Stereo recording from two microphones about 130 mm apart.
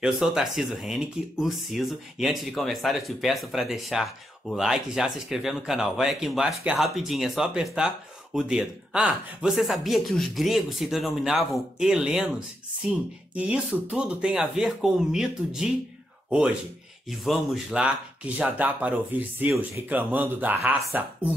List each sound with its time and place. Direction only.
0.0 s speech: 5° right (ahead or behind)
17.2 s speech: centre (ahead or behind)